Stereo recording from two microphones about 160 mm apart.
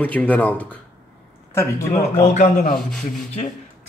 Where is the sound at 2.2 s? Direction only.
50° left (ahead or behind).